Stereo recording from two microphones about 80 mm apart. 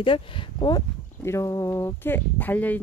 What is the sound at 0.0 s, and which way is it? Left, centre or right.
Speech, left.